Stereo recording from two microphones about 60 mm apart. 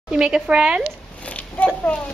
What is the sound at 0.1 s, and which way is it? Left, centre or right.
Speech, centre.